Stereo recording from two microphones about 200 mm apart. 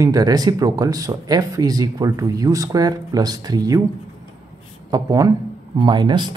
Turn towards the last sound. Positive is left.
turn(degrees=-20)  # may be behind; listen again after turning